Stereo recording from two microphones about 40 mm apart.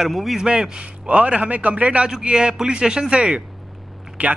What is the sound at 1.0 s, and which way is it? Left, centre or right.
A man's voice, right.